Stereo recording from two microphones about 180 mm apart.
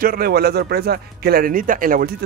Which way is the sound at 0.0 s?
55° right (ahead or behind).